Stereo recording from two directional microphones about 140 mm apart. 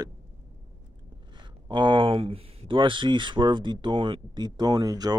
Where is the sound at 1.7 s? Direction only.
35° right (ahead or behind).